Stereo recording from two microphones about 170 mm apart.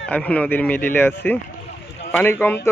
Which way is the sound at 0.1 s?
5° left (ahead or behind).